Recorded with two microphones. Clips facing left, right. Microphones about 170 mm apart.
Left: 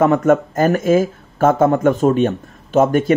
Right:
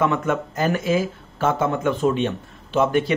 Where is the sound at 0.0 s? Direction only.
45° left (ahead or behind).